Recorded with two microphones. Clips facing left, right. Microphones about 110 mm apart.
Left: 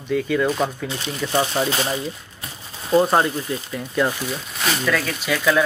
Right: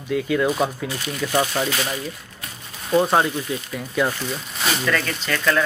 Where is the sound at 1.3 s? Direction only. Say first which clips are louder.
Left 1 dB; 20° left (ahead or behind).